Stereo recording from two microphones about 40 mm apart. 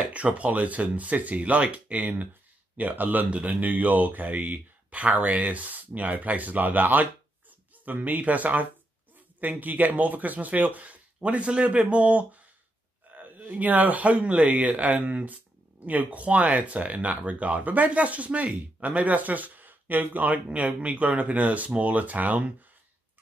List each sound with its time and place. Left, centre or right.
0.0 s speech: right
3.3 s speech: right
3.6 s speech: right
14.1 s speech: right
20.5 s speech: right